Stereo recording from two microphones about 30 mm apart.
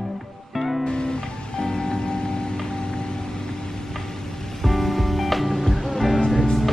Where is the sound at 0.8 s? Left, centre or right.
Left.